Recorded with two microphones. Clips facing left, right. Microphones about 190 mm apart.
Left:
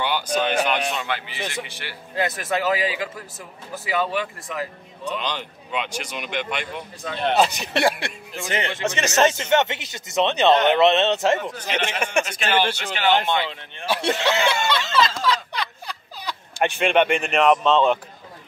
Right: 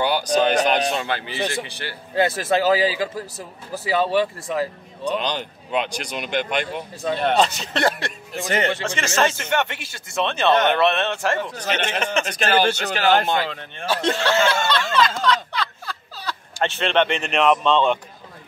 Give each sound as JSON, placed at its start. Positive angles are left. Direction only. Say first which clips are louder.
{"t": 0.0, "sound": "speech", "louder": "right 4 dB", "side_deg": -35}
{"t": 7.3, "sound": "speech", "louder": "even", "side_deg": 15}
{"t": 8.4, "sound": "speech", "louder": "right 5 dB", "side_deg": -45}
{"t": 8.8, "sound": "speech", "louder": "left 2 dB", "side_deg": 20}
{"t": 12.3, "sound": "speech", "louder": "right 3 dB", "side_deg": -40}
{"t": 13.8, "sound": "speech", "louder": "right 1 dB", "side_deg": 15}
{"t": 15.5, "sound": "a sound", "louder": "right 2 dB", "side_deg": 15}